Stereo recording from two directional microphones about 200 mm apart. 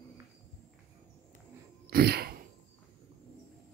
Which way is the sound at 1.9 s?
50° right (ahead or behind).